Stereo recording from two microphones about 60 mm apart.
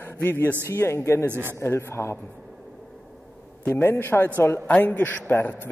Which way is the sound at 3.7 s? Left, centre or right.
Left.